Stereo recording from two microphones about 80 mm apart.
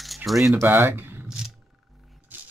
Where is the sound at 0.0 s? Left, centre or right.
Centre.